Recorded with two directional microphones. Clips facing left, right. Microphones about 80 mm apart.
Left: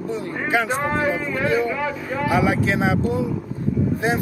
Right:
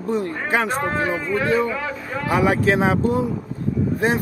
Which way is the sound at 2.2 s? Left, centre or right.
Right.